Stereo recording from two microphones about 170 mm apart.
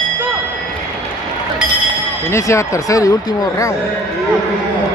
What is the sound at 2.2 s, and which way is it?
Speech, 15° left (ahead or behind).